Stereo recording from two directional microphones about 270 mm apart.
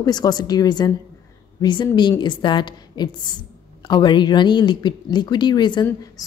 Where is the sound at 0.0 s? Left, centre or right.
Centre.